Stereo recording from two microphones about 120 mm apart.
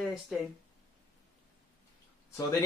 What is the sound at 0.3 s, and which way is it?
Speech, centre (ahead or behind).